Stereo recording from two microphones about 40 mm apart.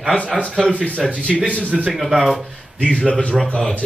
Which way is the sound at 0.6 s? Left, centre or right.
Left.